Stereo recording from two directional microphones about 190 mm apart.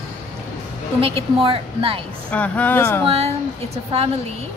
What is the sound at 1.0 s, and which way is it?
Speech, 30° right (ahead or behind).